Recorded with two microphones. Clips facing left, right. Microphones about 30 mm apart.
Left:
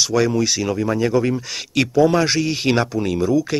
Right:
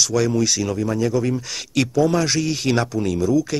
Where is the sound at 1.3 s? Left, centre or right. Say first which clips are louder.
Left 1 dB; centre.